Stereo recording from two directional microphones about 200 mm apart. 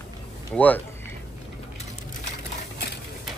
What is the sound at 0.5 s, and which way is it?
Speech, 10° left (ahead or behind).